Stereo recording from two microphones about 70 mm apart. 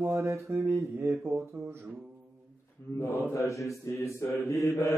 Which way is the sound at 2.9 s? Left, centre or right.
Left.